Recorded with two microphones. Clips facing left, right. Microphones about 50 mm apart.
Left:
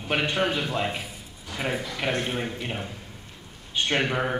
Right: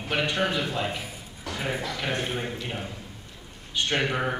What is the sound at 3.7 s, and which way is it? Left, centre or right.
Speech, centre.